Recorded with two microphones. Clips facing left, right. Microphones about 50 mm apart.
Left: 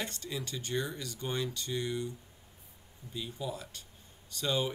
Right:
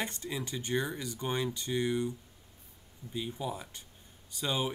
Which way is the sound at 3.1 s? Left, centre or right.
Right.